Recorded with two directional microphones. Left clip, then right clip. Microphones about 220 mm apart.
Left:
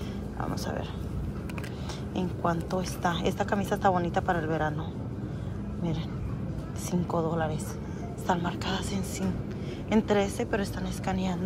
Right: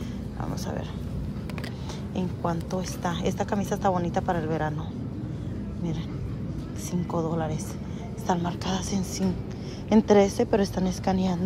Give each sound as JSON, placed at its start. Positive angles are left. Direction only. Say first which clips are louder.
{"t": 2.1, "sound": "a woman's voice", "louder": "left 1 dB", "side_deg": -10}
{"t": 6.9, "sound": "a woman's voice", "louder": "even", "side_deg": -10}